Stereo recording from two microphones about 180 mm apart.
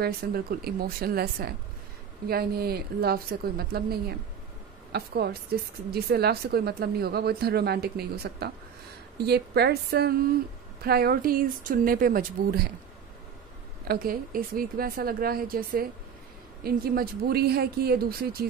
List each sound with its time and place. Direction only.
0.0 s speech: 60° right (ahead or behind)
13.8 s speech: 55° right (ahead or behind)